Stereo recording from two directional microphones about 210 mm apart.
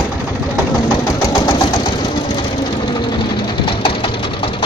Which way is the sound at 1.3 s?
20° left (ahead or behind).